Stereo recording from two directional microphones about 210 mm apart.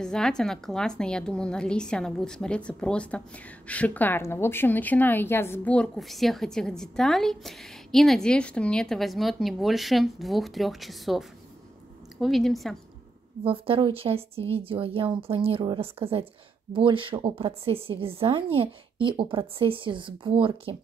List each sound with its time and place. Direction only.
0.0 s a woman's voice: 5° left (ahead or behind)
13.4 s a woman's voice: 25° right (ahead or behind)